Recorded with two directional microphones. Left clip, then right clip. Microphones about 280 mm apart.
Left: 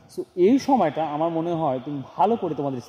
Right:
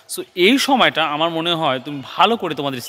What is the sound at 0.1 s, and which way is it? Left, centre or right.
Speech, centre.